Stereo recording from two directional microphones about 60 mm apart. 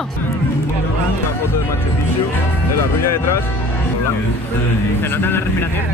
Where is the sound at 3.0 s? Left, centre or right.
Left.